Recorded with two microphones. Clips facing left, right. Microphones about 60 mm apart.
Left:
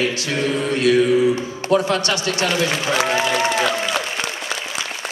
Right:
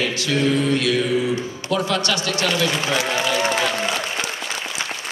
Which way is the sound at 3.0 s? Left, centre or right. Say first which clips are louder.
Left 2 dB; left.